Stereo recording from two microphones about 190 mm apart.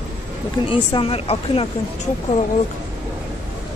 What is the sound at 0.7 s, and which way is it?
Speech, 30° left (ahead or behind).